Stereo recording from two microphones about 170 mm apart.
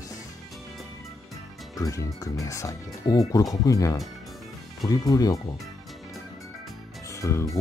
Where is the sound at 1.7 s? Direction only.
20° left (ahead or behind).